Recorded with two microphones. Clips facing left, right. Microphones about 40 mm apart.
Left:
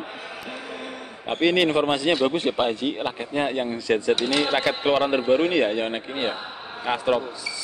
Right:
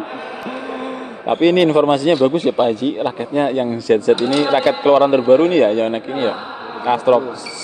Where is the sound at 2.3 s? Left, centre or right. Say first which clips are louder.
Right 7 dB; left.